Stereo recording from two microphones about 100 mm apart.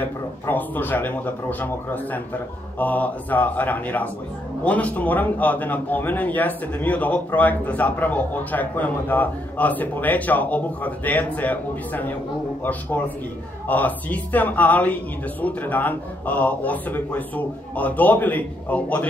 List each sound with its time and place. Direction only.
0.0 s a man's voice: 20° left (ahead or behind)
13.7 s a man's voice: 15° left (ahead or behind)